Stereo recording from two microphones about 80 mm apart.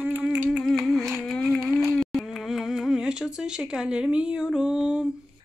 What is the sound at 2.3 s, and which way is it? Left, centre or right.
Speech, centre.